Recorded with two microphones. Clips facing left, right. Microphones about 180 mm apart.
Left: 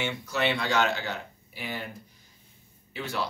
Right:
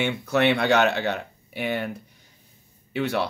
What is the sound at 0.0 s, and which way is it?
Speech, 60° right (ahead or behind).